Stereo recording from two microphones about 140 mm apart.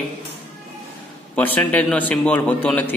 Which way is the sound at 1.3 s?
10° left (ahead or behind).